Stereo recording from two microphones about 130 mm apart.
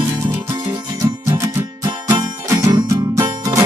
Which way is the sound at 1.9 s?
35° right (ahead or behind).